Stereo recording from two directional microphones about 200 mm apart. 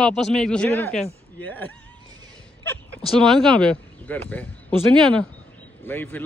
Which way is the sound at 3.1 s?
Centre (ahead or behind).